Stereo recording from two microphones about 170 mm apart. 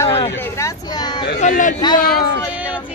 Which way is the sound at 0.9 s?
25° left (ahead or behind).